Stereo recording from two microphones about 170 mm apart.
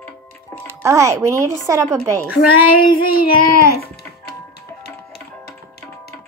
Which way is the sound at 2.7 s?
60° left (ahead or behind).